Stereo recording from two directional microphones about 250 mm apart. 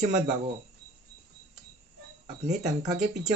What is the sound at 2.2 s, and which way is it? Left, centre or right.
Speech, right.